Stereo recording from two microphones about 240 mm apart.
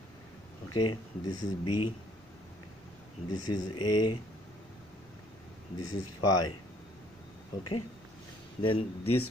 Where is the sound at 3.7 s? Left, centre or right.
Left.